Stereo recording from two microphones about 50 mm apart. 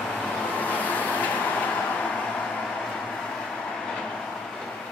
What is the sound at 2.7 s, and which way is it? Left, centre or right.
Train, centre.